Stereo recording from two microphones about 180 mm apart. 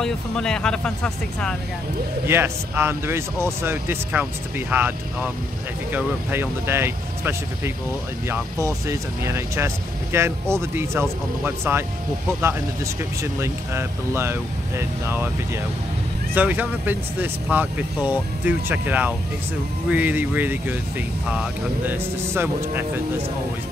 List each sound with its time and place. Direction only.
0.0 s speech: 5° left (ahead or behind)
2.2 s speech: 15° right (ahead or behind)